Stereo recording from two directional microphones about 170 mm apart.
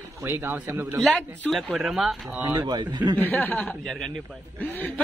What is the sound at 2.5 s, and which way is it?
Speech, 25° right (ahead or behind).